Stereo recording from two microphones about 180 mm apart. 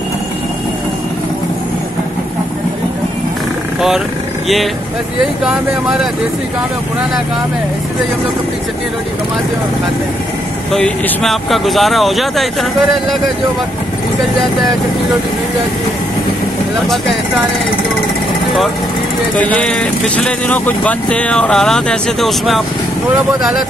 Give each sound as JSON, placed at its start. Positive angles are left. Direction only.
{"t": 5.4, "sound": "speech", "side_deg": 0}
{"t": 10.7, "sound": "speech", "side_deg": 0}
{"t": 19.3, "sound": "speech", "side_deg": 10}